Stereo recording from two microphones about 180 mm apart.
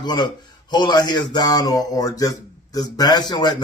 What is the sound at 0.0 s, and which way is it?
A man's voice, 25° left (ahead or behind).